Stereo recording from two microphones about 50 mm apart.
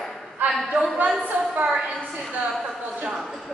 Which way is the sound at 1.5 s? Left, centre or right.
Right.